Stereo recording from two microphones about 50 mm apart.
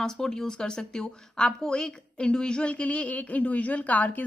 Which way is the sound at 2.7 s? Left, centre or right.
Left.